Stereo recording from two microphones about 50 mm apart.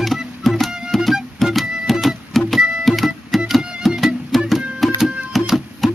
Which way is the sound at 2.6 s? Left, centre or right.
Centre.